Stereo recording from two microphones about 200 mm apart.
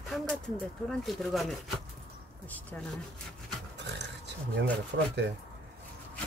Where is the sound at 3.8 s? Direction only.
60° right (ahead or behind).